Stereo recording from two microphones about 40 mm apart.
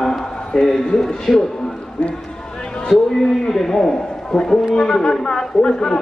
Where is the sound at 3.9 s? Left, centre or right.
Centre.